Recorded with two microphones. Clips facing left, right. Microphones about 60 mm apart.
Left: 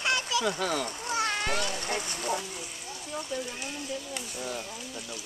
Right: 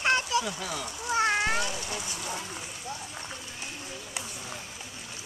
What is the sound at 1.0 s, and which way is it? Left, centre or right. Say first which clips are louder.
Cat: right 5 dB; right.